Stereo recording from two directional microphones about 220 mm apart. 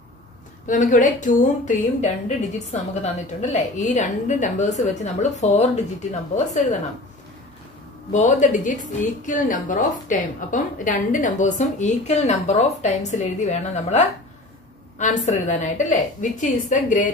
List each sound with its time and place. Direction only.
0.7 s a woman's voice: 35° left (ahead or behind)
8.1 s a woman's voice: 35° left (ahead or behind)